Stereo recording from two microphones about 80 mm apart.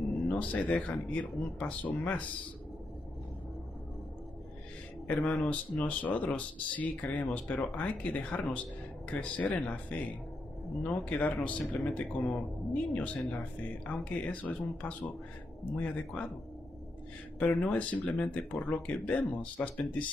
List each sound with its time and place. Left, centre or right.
0.3 s speech: centre
5.0 s speech: centre
17.4 s speech: centre